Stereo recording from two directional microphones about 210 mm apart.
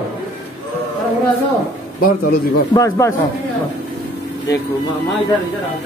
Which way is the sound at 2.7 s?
15° left (ahead or behind).